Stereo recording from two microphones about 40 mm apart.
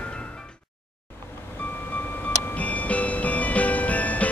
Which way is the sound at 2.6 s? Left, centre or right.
Left.